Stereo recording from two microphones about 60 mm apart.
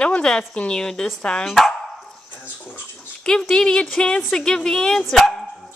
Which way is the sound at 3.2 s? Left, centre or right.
Centre.